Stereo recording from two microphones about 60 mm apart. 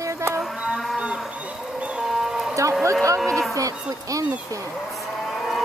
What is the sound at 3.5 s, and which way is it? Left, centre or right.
Speech, right.